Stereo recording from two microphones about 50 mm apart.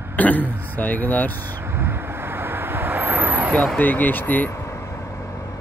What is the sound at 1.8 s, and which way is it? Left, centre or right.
Vehicle, right.